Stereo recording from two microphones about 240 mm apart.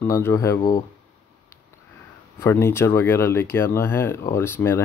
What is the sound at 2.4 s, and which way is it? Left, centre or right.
Speech, centre.